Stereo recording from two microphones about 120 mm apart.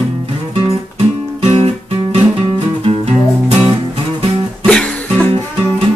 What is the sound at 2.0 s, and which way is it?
Music, 40° right (ahead or behind).